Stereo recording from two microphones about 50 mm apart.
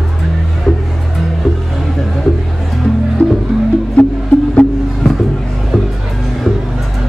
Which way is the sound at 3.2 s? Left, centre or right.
Left.